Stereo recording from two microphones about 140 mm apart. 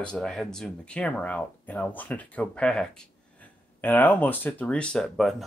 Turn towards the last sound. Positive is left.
turn(degrees=0)  # may be behind; listen again after turning